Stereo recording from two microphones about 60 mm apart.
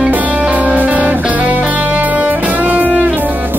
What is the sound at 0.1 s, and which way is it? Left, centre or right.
Music, right.